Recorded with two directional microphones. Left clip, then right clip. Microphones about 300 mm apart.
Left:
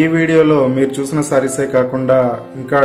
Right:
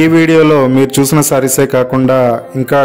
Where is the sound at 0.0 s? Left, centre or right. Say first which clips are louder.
Right 4 dB; right.